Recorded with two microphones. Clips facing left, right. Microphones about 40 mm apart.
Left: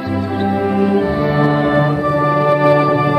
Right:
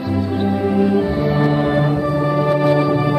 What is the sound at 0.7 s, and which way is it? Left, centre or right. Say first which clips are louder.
Music: left 1 dB; centre.